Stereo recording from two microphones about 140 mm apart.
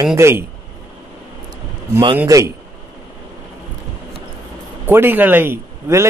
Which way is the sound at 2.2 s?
25° right (ahead or behind).